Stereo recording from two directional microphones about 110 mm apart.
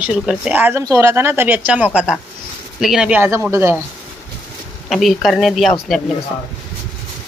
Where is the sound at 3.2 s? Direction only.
25° right (ahead or behind).